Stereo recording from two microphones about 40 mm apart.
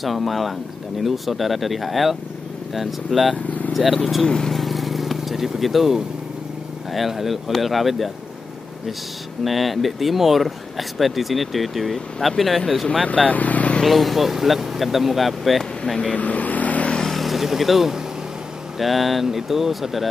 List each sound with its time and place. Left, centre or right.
0.0 s speech: centre
3.4 s vehicle: left
3.7 s speech: centre
4.3 s speech: centre
4.6 s vehicle: centre
6.9 s speech: centre
9.4 s speech: centre
13.0 s speech: left
13.3 s vehicle: left
13.8 s speech: centre
16.2 s vehicle: left
16.9 s vehicle: centre
18.8 s speech: centre